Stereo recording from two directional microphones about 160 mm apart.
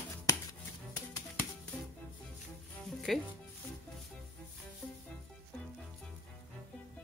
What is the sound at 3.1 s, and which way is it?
Speech, centre (ahead or behind).